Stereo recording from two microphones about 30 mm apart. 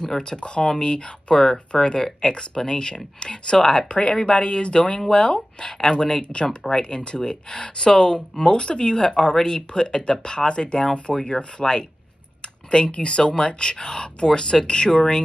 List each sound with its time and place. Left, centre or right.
0.0 s speech: left
1.3 s speech: centre
3.9 s speech: left